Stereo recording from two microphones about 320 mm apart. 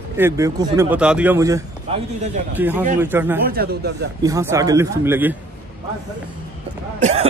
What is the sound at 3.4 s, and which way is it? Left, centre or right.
Speech, right.